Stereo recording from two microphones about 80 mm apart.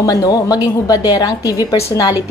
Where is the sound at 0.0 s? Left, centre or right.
Left.